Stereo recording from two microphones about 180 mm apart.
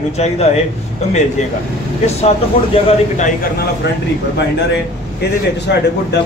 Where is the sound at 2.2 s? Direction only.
40° left (ahead or behind).